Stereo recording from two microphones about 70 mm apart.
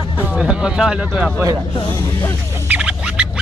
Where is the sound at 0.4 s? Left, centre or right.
Centre.